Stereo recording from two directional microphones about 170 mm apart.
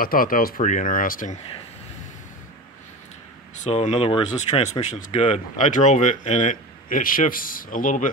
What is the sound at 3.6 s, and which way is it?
Speech, 40° left (ahead or behind).